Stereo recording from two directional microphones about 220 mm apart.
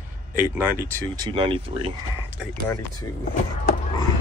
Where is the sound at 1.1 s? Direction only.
20° right (ahead or behind).